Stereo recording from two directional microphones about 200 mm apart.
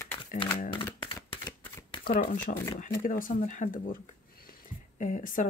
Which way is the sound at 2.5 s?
45° left (ahead or behind).